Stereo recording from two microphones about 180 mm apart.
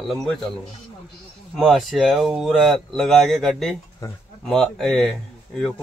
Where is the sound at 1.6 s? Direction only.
Centre (ahead or behind).